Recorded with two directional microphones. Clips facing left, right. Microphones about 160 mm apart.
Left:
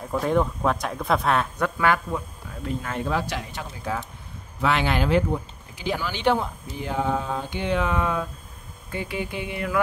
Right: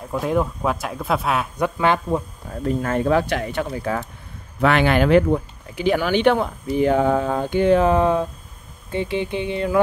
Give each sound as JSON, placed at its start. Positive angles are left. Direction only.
{"t": 0.1, "sound": "speech", "side_deg": 0}
{"t": 1.8, "sound": "speech", "side_deg": -30}
{"t": 8.9, "sound": "a sound", "side_deg": -25}